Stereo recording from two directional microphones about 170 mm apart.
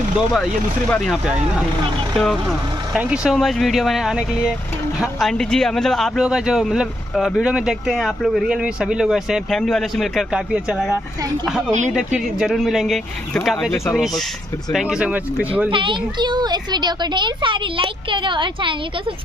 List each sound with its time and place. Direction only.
0.8 s speech: 5° left (ahead or behind)
15.7 s a woman's voice: 30° right (ahead or behind)